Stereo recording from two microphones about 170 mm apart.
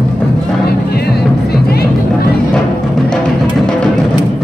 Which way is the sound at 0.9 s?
65° left (ahead or behind).